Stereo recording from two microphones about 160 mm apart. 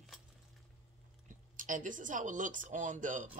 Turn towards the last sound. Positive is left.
turn(degrees=-55)  # may be behind; listen again after turning